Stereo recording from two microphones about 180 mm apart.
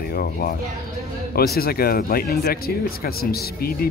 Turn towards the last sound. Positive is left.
turn(degrees=55)  # may be behind; listen again after turning